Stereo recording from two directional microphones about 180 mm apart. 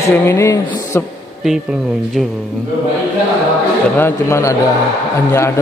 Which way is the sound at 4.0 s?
15° left (ahead or behind).